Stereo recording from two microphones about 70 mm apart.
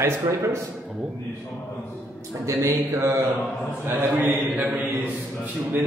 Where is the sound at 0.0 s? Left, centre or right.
Right.